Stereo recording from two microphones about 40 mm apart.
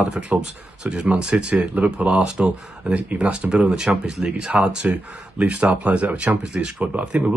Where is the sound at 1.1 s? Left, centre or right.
Centre.